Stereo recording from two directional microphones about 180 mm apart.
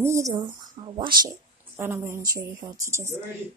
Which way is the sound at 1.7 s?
15° right (ahead or behind).